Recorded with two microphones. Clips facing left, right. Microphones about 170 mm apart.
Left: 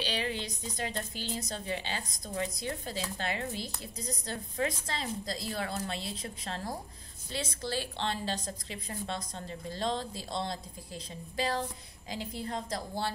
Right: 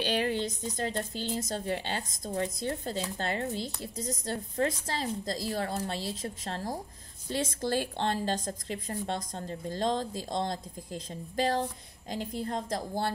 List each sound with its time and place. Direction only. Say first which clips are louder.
0.0 s a woman's voice: right 6 dB; 50° right (ahead or behind)